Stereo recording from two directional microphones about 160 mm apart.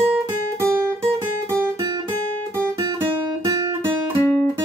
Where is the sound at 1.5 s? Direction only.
20° right (ahead or behind).